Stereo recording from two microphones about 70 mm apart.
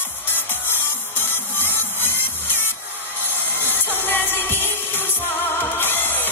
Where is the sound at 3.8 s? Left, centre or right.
Left.